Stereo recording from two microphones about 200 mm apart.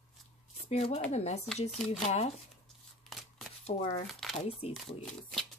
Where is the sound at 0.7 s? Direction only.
30° left (ahead or behind).